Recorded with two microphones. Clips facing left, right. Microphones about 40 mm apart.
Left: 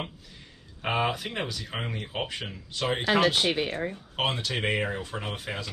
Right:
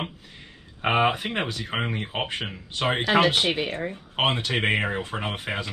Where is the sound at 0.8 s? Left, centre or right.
Right.